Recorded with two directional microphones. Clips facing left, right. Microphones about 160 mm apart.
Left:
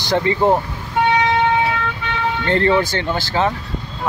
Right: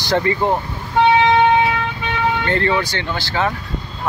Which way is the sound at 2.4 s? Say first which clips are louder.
Left 3 dB; 35° left (ahead or behind).